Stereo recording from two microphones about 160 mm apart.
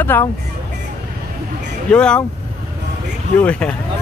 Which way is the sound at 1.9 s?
5° left (ahead or behind).